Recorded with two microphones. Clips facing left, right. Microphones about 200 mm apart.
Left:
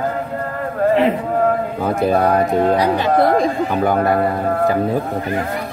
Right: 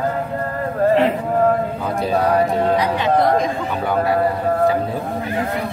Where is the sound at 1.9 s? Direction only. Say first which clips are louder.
Left 3 dB; 55° left (ahead or behind).